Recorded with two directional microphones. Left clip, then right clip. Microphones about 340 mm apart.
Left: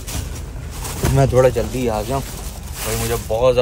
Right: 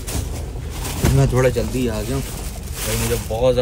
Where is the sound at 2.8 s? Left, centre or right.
Centre.